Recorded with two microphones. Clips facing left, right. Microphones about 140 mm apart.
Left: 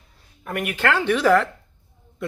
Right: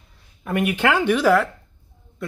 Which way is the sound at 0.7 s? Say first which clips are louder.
Right 1 dB; 15° right (ahead or behind).